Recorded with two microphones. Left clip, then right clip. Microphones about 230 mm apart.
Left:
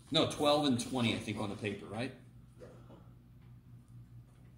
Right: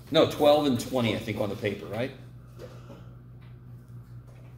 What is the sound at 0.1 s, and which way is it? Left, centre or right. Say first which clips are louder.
Speech: right 9 dB; left.